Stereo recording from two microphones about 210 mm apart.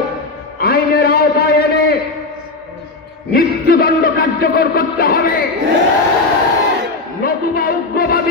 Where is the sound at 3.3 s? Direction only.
45° left (ahead or behind).